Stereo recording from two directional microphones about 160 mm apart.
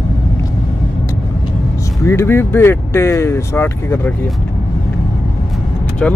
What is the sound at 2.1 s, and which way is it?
Speech, 15° left (ahead or behind).